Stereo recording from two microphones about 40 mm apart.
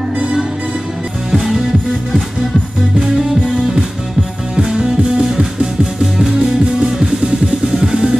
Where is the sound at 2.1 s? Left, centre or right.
Centre.